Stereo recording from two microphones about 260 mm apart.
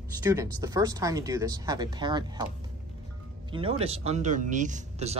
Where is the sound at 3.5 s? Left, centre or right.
Right.